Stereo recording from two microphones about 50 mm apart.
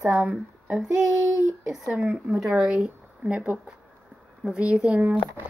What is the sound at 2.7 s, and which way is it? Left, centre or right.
Speech, centre.